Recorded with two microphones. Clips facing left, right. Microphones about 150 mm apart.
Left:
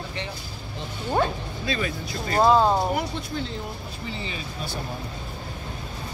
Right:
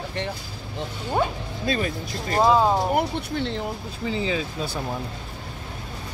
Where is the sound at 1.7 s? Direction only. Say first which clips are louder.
Right 3 dB; 45° right (ahead or behind).